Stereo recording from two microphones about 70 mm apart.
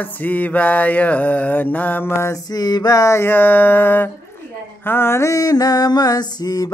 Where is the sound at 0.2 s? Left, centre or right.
Left.